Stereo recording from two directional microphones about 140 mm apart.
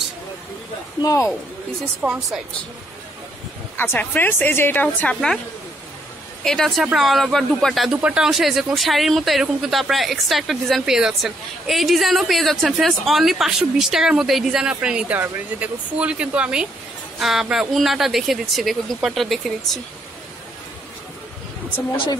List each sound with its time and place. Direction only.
1.0 s speech: 20° left (ahead or behind)
2.0 s speech: 15° right (ahead or behind)
3.7 s a woman's voice: 15° left (ahead or behind)
6.4 s speech: 5° left (ahead or behind)
21.9 s speech: 35° left (ahead or behind)